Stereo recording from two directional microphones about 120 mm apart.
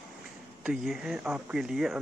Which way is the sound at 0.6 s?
5° right (ahead or behind).